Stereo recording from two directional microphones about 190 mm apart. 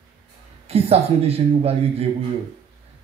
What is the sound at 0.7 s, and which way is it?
A man's voice, 30° right (ahead or behind).